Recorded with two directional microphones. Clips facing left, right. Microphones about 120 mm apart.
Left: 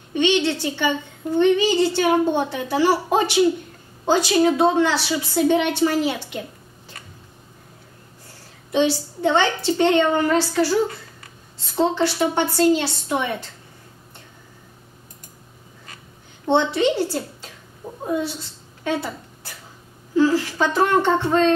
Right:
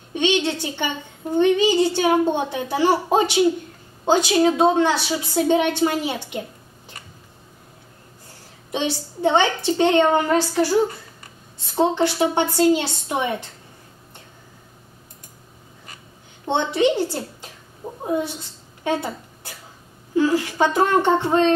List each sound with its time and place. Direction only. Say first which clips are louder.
0.2 s a woman's voice: left 2 dB; 15° right (ahead or behind)
8.7 s speech: left 5 dB; 15° right (ahead or behind)
16.4 s speech: left 1 dB; 15° right (ahead or behind)
20.2 s speech: even; 20° right (ahead or behind)